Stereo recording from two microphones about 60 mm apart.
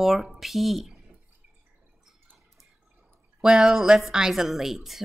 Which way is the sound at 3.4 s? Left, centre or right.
Centre.